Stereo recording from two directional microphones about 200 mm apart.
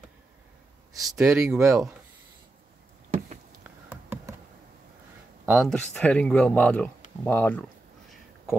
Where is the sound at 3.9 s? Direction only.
10° right (ahead or behind).